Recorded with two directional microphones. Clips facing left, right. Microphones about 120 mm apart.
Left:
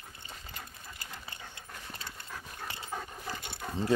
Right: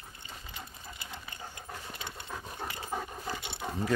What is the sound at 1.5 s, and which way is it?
Dog, 20° right (ahead or behind).